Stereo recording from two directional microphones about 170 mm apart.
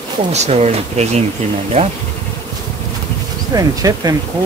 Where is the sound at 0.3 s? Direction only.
40° right (ahead or behind).